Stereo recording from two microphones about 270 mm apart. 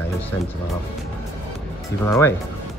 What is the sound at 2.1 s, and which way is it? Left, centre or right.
Speech, centre.